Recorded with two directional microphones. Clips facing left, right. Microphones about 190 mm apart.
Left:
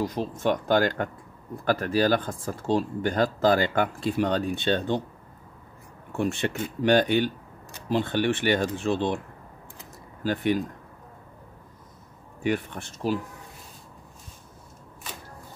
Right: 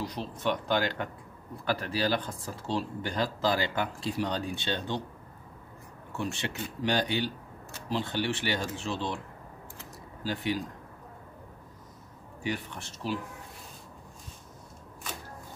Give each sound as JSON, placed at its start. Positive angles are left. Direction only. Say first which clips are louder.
{"t": 0.0, "sound": "speech", "louder": "left 6 dB", "side_deg": 45}
{"t": 6.1, "sound": "speech", "louder": "left 7 dB", "side_deg": 55}
{"t": 10.2, "sound": "speech", "louder": "left 7 dB", "side_deg": 55}
{"t": 12.4, "sound": "speech", "louder": "left 7 dB", "side_deg": 50}